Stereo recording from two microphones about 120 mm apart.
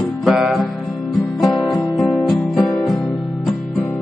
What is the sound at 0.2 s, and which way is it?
Music, centre (ahead or behind).